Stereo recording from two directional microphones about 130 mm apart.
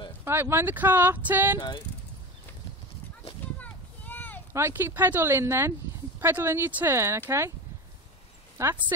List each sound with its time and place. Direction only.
0.2 s speech: 20° right (ahead or behind)
3.5 s a sound: 10° left (ahead or behind)
4.5 s speech: 20° right (ahead or behind)
8.6 s speech: 20° right (ahead or behind)